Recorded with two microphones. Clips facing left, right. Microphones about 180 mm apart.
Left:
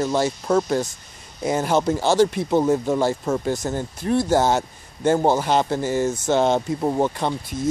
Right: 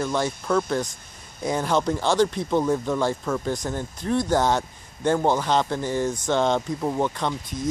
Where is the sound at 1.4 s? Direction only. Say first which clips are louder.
Left 3 dB; 5° left (ahead or behind).